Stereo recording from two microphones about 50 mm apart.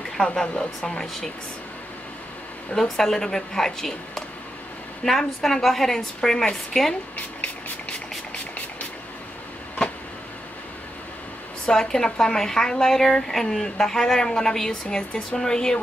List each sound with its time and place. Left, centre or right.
0.4 s speech: centre
2.7 s a woman's voice: centre
11.6 s speech: centre